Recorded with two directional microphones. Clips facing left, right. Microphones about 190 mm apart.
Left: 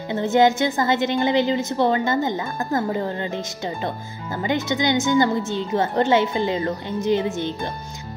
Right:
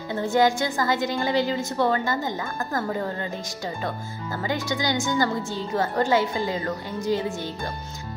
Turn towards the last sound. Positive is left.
turn(degrees=20)  # may be behind; listen again after turning